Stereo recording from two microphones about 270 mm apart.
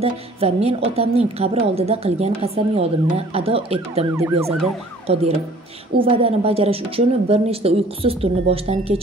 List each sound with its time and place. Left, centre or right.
0.0 s a woman's voice: right
4.1 s speech: centre
5.1 s a woman's voice: right